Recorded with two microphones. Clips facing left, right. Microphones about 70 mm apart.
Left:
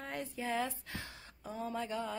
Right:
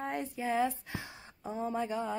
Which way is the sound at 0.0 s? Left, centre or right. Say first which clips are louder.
Right 5 dB; right.